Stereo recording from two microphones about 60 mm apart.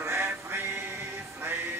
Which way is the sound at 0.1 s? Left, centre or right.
Right.